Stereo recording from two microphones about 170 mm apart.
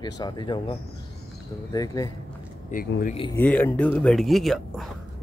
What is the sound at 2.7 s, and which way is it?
Speech, 50° left (ahead or behind).